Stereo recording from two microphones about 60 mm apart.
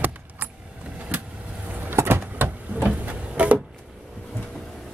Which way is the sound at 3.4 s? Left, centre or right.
Right.